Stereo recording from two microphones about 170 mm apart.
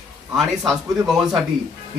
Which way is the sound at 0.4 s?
Centre (ahead or behind).